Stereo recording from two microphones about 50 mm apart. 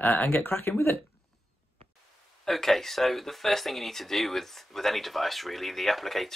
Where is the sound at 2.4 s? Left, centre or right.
Centre.